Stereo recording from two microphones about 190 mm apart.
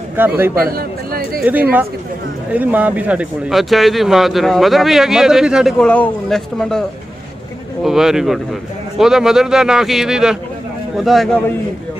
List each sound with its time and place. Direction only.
0.1 s a man's voice: 10° right (ahead or behind)
0.6 s chatter: 50° right (ahead or behind)
1.4 s speech: 10° right (ahead or behind)
7.8 s speech: centre (ahead or behind)